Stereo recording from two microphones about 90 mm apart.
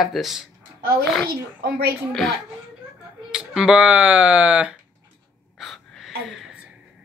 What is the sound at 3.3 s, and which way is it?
Speech, 5° right (ahead or behind).